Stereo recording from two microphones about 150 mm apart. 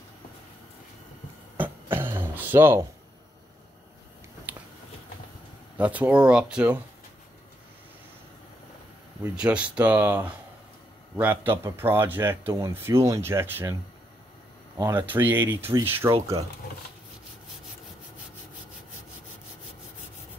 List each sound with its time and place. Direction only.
1.6 s a sound: 15° right (ahead or behind)
4.5 s finger snapping: 10° right (ahead or behind)
5.8 s speech: 10° right (ahead or behind)
9.3 s speech: 5° right (ahead or behind)
14.8 s speech: 15° right (ahead or behind)